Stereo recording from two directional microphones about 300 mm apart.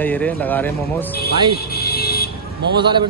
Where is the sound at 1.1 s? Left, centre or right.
Left.